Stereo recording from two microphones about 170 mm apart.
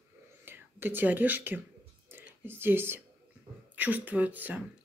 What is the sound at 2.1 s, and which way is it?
Whispering, 15° right (ahead or behind).